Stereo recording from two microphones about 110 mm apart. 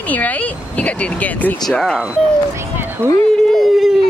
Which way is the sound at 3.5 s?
Centre (ahead or behind).